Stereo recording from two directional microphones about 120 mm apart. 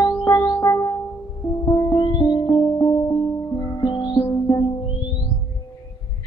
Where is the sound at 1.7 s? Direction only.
35° left (ahead or behind).